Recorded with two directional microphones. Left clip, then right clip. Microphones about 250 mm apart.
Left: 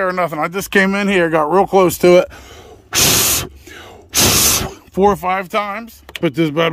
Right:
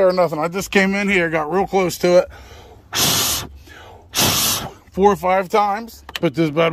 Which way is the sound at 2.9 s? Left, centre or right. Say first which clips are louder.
Left 4 dB; left.